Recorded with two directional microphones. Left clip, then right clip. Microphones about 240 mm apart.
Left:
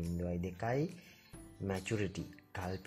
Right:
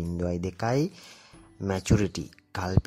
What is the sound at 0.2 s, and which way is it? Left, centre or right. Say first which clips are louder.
Speech: right 11 dB; right.